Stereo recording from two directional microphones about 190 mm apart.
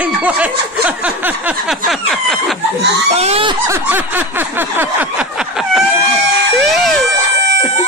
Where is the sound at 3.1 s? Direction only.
35° right (ahead or behind).